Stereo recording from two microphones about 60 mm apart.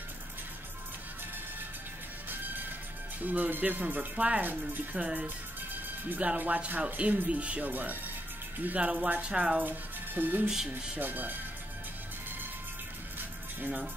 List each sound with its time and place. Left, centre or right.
3.2 s speech: right
9.6 s speech: right
13.6 s speech: right